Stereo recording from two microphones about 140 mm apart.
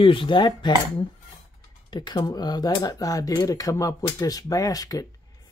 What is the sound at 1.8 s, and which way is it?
Speech, 30° left (ahead or behind).